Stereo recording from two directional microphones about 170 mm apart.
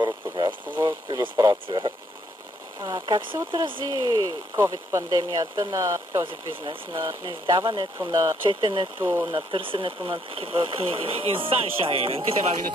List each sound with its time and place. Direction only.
0.0 s a sound: 25° right (ahead or behind)
0.7 s speech: 25° right (ahead or behind)
6.2 s speech: 30° right (ahead or behind)